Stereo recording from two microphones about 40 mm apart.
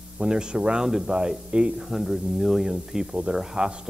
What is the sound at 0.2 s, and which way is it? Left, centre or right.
Speech, right.